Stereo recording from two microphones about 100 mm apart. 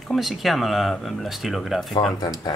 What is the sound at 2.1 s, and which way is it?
Speech, 40° left (ahead or behind).